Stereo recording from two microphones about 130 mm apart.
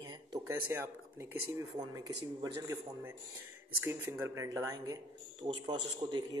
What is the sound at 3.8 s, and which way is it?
Speech, 20° right (ahead or behind).